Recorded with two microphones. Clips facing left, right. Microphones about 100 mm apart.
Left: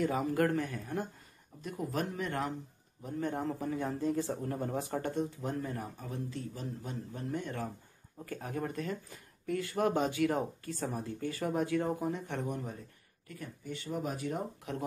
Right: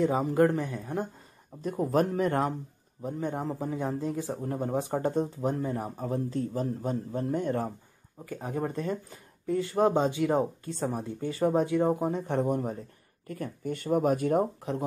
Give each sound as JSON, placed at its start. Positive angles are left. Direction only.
{"t": 0.0, "sound": "speech", "side_deg": -25}
{"t": 1.6, "sound": "a man's voice", "side_deg": -40}
{"t": 3.2, "sound": "speech", "side_deg": -20}
{"t": 5.9, "sound": "a man's voice", "side_deg": -40}
{"t": 8.3, "sound": "speech", "side_deg": -25}
{"t": 13.3, "sound": "speech", "side_deg": -50}